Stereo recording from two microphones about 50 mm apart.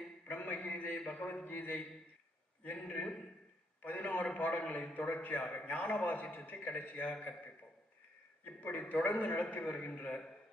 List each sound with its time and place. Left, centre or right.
0.3 s a sound: left
2.6 s a man's voice: left
8.5 s a man's voice: left